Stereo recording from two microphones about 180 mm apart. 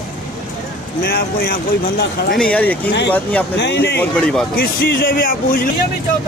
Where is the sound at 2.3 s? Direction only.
5° left (ahead or behind).